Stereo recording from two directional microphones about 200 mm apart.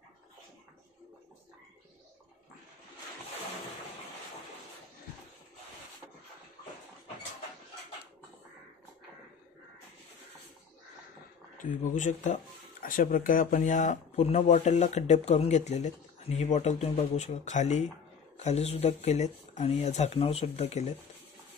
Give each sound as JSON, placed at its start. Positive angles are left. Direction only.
{"t": 11.5, "sound": "speech", "side_deg": 40}